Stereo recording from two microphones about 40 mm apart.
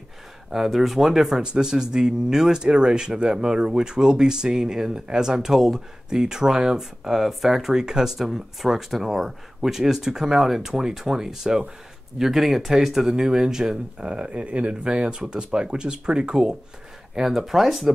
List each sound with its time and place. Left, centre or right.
0.5 s speech: centre
13.9 s speech: right; by 17.9 s centre